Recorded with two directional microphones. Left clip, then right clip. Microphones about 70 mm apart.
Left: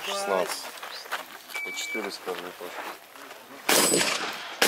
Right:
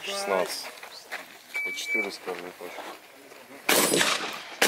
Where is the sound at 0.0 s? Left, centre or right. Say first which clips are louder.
Even; centre.